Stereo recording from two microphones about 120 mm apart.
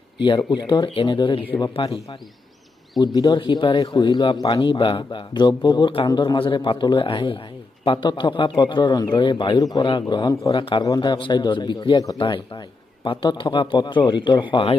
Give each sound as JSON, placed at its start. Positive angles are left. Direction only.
{"t": 0.6, "sound": "speech", "side_deg": 40}
{"t": 3.0, "sound": "speech", "side_deg": 35}